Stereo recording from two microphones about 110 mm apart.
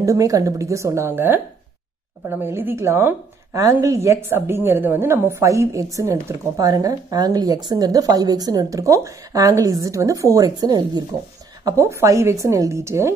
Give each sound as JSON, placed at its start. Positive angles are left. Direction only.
{"t": 0.0, "sound": "a woman's voice", "side_deg": -30}